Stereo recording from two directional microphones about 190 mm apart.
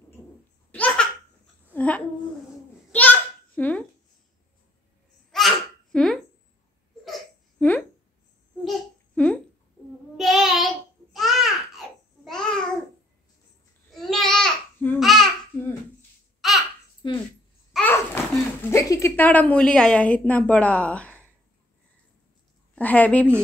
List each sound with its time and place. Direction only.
0.7 s baby laughter: 10° left (ahead or behind)
1.7 s babbling: 10° left (ahead or behind)
2.9 s a sound: 10° left (ahead or behind)
5.3 s babbling: centre (ahead or behind)
7.1 s hiccup: 10° left (ahead or behind)
8.6 s babbling: 5° left (ahead or behind)
10.1 s child singing: centre (ahead or behind)
11.1 s babbling: centre (ahead or behind)
13.9 s babbling: centre (ahead or behind)
16.3 s babbling: centre (ahead or behind)
17.0 s a sound: 25° left (ahead or behind)
17.7 s babbling: 10° left (ahead or behind)
18.7 s a woman's voice: 15° left (ahead or behind)
22.8 s a woman's voice: 10° left (ahead or behind)